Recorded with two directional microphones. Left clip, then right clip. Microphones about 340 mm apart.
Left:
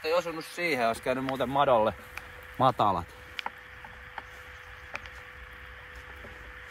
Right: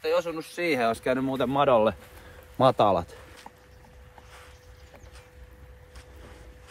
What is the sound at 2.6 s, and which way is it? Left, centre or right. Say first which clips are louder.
Speech: right 4 dB; centre.